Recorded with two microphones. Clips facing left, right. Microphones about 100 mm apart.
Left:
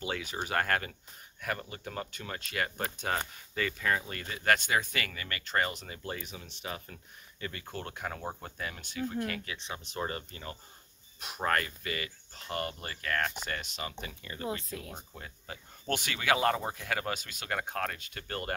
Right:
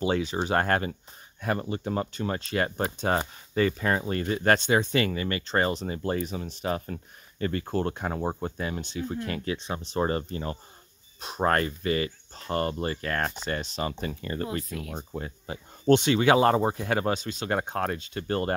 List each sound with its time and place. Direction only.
0.0 s speech: 30° right (ahead or behind)
14.5 s speech: 30° left (ahead or behind)
15.0 s speech: 30° right (ahead or behind)